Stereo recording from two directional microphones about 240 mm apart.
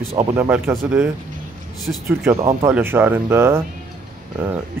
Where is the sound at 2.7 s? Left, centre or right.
Centre.